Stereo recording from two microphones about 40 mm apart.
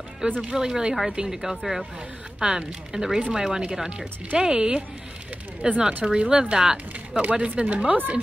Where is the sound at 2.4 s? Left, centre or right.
Right.